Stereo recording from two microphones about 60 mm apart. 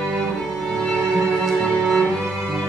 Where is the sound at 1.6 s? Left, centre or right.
Centre.